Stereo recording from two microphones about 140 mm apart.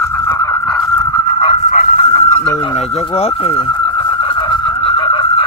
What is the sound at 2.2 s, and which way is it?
Bird, 15° left (ahead or behind).